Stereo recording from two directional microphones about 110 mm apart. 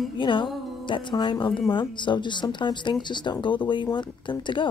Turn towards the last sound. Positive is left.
turn(degrees=45)  # may be behind; listen again after turning